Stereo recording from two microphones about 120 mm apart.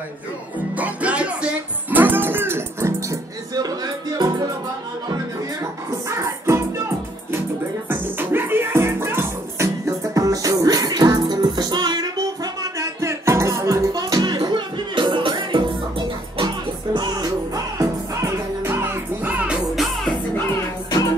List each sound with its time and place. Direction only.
0.7 s music: 10° right (ahead or behind)
7.9 s music: 20° right (ahead or behind); by 12.3 s 35° right (ahead or behind)
12.7 s music: 25° right (ahead or behind); by 15.6 s 40° right (ahead or behind)
16.9 s music: 35° right (ahead or behind)
17.7 s music: 20° right (ahead or behind); by 20.2 s centre (ahead or behind)